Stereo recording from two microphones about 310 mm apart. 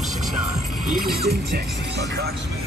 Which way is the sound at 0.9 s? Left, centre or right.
Right.